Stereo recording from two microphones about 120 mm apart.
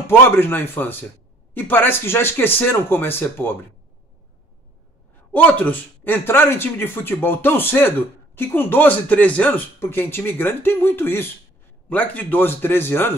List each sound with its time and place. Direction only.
0.0 s speech: 20° left (ahead or behind)
5.3 s speech: 15° left (ahead or behind)